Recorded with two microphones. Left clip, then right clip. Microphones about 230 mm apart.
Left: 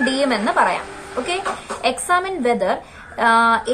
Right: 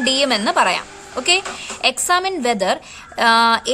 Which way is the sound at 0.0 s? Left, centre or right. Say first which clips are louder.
Right 2 dB; right.